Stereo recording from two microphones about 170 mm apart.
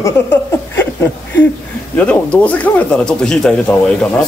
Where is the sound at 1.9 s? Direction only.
10° left (ahead or behind).